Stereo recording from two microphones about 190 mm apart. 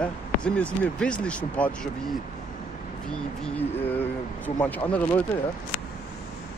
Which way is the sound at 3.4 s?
5° left (ahead or behind).